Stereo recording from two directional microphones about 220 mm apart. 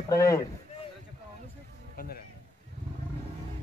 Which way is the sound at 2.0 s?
45° left (ahead or behind).